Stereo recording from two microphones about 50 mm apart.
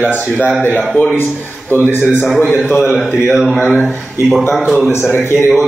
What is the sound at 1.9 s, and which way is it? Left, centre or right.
Speech, left.